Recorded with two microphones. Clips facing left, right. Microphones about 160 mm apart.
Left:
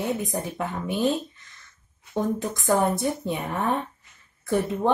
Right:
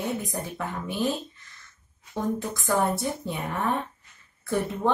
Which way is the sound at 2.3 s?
20° left (ahead or behind).